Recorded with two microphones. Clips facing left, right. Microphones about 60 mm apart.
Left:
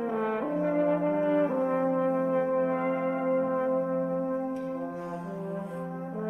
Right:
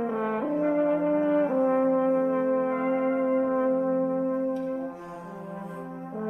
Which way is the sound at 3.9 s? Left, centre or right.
Centre.